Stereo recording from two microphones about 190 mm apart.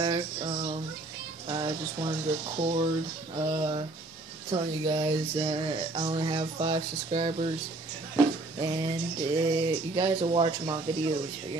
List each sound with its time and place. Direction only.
0.0 s a sound: 25° right (ahead or behind)
1.5 s speech: 25° right (ahead or behind)
8.5 s speech: 25° right (ahead or behind)